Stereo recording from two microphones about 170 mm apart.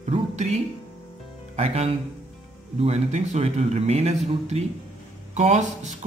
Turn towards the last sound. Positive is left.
turn(degrees=-45)  # may be behind; listen again after turning